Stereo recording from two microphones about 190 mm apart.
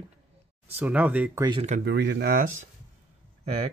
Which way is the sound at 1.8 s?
65° right (ahead or behind).